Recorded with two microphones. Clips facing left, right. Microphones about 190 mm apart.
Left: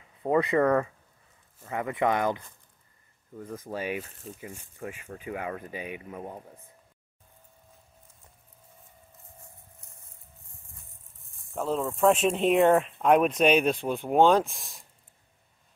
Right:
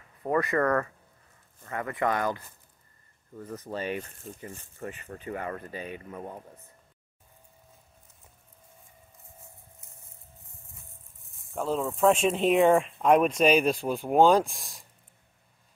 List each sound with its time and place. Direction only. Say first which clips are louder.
0.2 s speech: left 3 dB; 15° left (ahead or behind)
3.5 s speech: even; 10° left (ahead or behind)
11.5 s speech: even; centre (ahead or behind)